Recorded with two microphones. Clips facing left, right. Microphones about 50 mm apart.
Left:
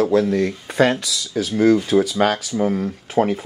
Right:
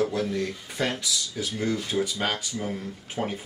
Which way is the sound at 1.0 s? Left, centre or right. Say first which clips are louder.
Left 7 dB; left.